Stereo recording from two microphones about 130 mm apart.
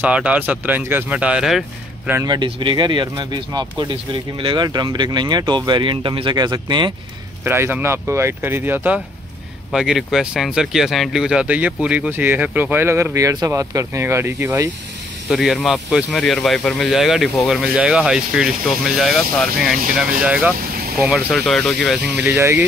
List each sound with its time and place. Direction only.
0.0 s speech: 10° right (ahead or behind)
2.2 s speech: 35° right (ahead or behind)
7.4 s speech: 20° right (ahead or behind)
9.7 s speech: 5° right (ahead or behind); by 14.7 s 20° right (ahead or behind)
15.2 s speech: centre (ahead or behind)
20.2 s speech: 10° right (ahead or behind)
21.1 s speech: centre (ahead or behind)
21.9 s speech: 10° right (ahead or behind)
22.4 s speech: 20° right (ahead or behind)